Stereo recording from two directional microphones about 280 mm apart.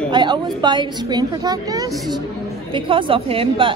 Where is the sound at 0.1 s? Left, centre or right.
Centre.